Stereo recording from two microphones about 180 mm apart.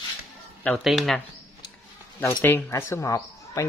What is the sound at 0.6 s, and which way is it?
Speech, centre (ahead or behind).